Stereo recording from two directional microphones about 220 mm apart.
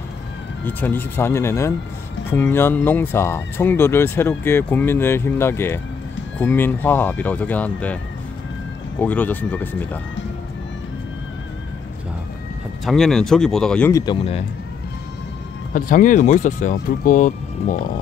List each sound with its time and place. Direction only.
0.7 s speech: 10° left (ahead or behind)
9.0 s speech: 10° left (ahead or behind)
12.8 s speech: centre (ahead or behind)
15.7 s speech: 40° left (ahead or behind)